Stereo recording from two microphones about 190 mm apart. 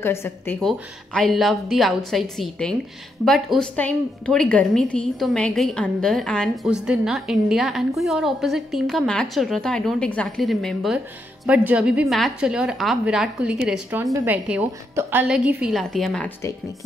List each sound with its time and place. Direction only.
0.0 s a woman's voice: 15° left (ahead or behind)